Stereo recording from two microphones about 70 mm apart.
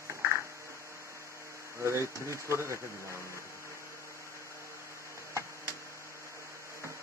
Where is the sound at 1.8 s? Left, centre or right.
Right.